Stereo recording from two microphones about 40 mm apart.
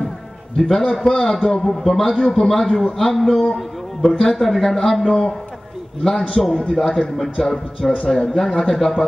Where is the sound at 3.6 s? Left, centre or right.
Centre.